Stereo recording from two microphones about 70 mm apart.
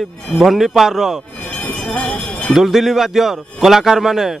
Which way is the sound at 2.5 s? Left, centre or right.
Centre.